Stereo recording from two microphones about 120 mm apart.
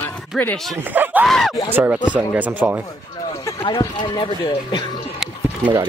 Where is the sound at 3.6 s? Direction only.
40° left (ahead or behind).